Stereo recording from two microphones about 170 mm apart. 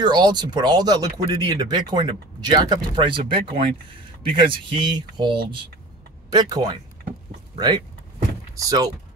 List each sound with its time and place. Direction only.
0.0 s speech: 25° right (ahead or behind)